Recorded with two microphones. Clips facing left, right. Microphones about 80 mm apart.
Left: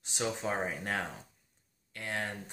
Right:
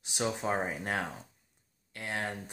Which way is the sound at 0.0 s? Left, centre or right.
Centre.